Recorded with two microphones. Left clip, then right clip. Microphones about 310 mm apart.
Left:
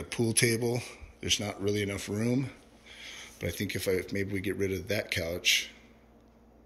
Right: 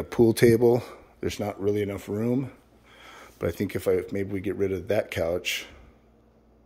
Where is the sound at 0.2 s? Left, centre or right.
Centre.